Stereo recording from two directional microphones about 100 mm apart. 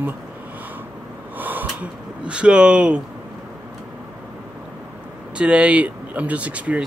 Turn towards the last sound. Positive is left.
turn(degrees=-15)  # may be behind; listen again after turning